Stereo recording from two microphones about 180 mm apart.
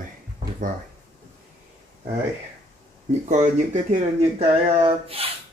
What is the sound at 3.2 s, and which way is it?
Speech, 45° right (ahead or behind).